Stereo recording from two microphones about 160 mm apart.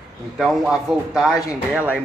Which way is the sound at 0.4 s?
Centre (ahead or behind).